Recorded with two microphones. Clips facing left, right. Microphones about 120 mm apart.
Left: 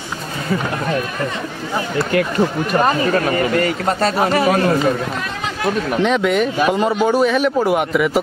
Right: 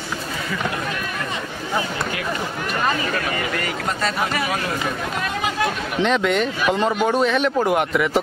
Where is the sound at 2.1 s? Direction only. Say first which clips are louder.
Left 12 dB; 50° left (ahead or behind).